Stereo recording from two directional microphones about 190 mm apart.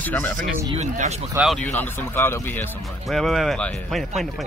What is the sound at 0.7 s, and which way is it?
Speech, 35° right (ahead or behind).